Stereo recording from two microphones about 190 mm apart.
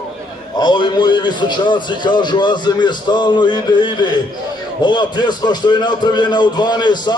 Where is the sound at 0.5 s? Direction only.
25° left (ahead or behind).